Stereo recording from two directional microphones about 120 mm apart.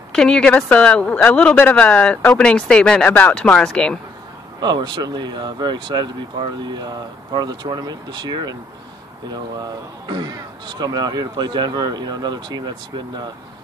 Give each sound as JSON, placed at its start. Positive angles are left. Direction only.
{"t": 0.1, "sound": "a woman's voice", "side_deg": 5}
{"t": 4.6, "sound": "speech", "side_deg": -40}